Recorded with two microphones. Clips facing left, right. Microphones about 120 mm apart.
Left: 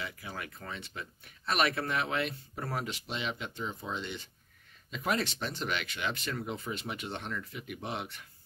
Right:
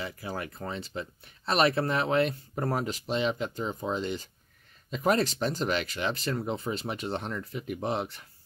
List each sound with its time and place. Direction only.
0.0 s speech: 35° right (ahead or behind)